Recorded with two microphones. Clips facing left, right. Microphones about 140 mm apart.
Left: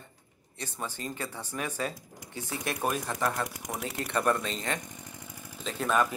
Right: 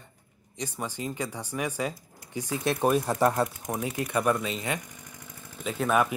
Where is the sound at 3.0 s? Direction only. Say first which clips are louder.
Right 7 dB; 35° right (ahead or behind).